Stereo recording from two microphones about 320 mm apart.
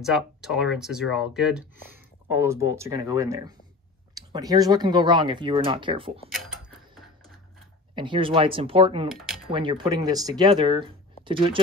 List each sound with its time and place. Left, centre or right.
0.0 s speech: centre
6.3 s a sound: centre
7.9 s speech: centre